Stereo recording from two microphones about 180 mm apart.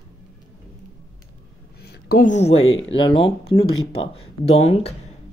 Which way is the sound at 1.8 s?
60° left (ahead or behind).